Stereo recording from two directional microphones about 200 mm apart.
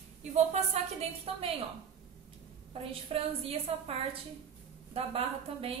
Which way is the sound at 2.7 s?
30° right (ahead or behind).